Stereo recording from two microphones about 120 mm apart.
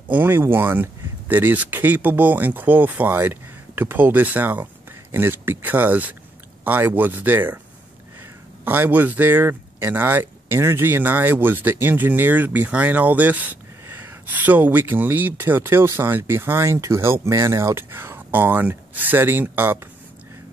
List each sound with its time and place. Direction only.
0.1 s speech: 15° right (ahead or behind)
8.6 s speech: 15° right (ahead or behind)